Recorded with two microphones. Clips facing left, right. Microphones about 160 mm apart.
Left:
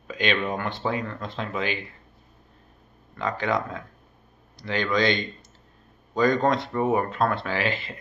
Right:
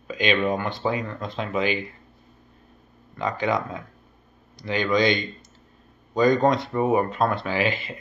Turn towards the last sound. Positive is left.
turn(degrees=-15)  # may be behind; listen again after turning